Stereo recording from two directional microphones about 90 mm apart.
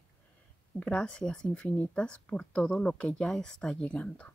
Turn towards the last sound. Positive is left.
turn(degrees=15)  # may be behind; listen again after turning